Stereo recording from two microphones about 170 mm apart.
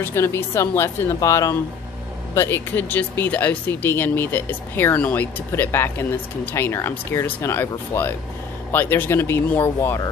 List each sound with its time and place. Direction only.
0.0 s speech: 15° left (ahead or behind)